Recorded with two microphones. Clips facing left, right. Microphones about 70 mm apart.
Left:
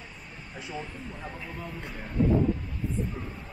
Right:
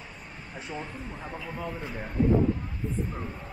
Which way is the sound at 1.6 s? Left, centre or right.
Right.